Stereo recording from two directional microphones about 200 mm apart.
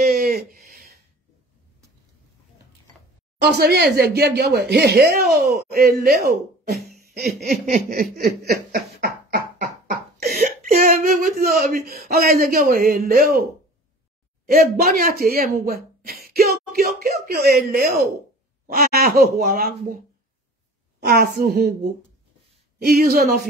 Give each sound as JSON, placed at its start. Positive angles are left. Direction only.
{"t": 0.0, "sound": "a sound", "side_deg": -50}
{"t": 3.3, "sound": "speech", "side_deg": -55}
{"t": 6.9, "sound": "laughter", "side_deg": -50}
{"t": 7.6, "sound": "a sound", "side_deg": -40}
{"t": 14.4, "sound": "speech", "side_deg": -50}
{"t": 21.0, "sound": "speech", "side_deg": -50}
{"t": 22.8, "sound": "speech", "side_deg": -50}